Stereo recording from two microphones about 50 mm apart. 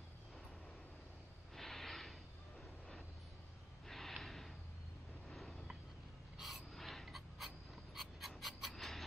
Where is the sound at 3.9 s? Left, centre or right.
Centre.